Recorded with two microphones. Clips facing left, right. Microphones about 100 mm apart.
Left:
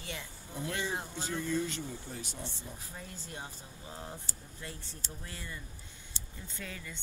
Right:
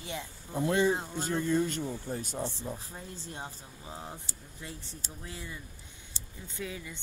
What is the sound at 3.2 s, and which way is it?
Speech, 25° right (ahead or behind).